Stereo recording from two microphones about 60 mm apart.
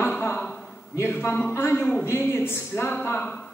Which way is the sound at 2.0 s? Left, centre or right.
Left.